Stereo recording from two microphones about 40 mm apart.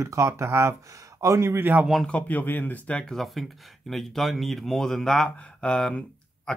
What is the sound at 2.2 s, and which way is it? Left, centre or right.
Speech, left.